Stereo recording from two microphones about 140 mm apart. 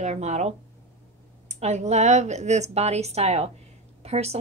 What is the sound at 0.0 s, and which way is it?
A woman's voice, 55° right (ahead or behind).